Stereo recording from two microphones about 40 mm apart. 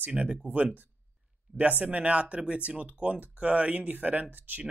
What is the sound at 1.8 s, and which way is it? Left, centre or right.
Speech, right.